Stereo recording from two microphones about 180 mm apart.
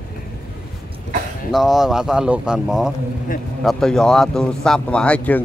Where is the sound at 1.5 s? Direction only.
Centre (ahead or behind).